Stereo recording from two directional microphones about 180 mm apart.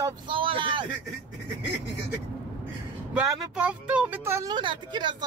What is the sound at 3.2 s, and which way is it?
Speech, 5° right (ahead or behind).